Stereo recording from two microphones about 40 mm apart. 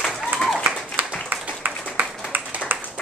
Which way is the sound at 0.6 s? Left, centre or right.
Right.